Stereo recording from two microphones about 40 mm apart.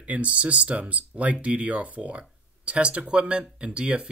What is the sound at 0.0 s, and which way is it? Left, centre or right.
Speech, right.